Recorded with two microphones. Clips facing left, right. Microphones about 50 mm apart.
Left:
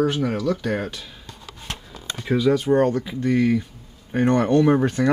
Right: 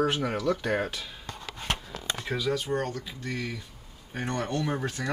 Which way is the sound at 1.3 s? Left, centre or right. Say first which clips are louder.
Right 2 dB; right.